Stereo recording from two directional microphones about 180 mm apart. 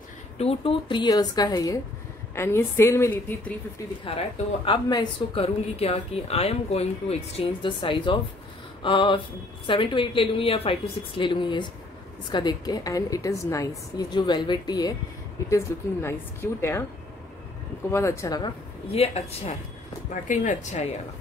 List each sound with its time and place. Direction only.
0.4 s a woman's voice: 30° left (ahead or behind); by 3.5 s 10° left (ahead or behind)
4.6 s a woman's voice: 25° left (ahead or behind)
17.9 s a woman's voice: 15° left (ahead or behind)
18.9 s speech: 35° left (ahead or behind)